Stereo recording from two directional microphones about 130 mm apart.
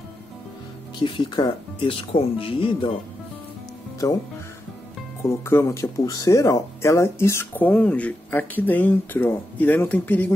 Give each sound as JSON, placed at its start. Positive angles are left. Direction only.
{"t": 0.9, "sound": "speech", "side_deg": 35}
{"t": 4.0, "sound": "speech", "side_deg": 25}
{"t": 5.2, "sound": "speech", "side_deg": 20}